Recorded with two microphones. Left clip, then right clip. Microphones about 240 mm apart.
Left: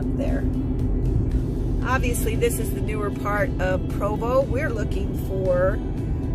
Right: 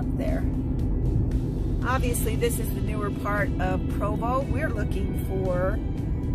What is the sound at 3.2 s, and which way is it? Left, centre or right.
Speech, centre.